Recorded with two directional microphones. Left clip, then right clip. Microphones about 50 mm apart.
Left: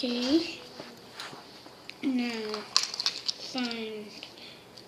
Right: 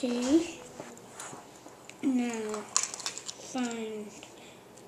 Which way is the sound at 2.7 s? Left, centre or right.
Right.